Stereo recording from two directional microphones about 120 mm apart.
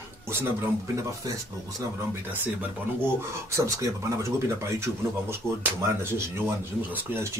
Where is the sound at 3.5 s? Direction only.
25° right (ahead or behind).